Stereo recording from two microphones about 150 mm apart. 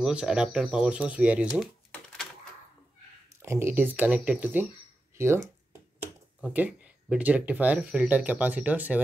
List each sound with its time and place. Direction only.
0.0 s speech: 5° right (ahead or behind)
3.4 s speech: 15° right (ahead or behind)
5.1 s a sound: 15° right (ahead or behind)
6.4 s speech: 10° right (ahead or behind)